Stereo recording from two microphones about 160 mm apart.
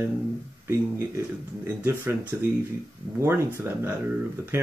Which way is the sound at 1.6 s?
15° right (ahead or behind).